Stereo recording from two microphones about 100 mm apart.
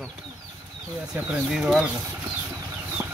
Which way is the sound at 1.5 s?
5° right (ahead or behind).